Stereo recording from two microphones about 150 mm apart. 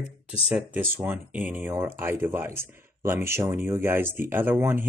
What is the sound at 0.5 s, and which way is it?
Speech, 10° right (ahead or behind).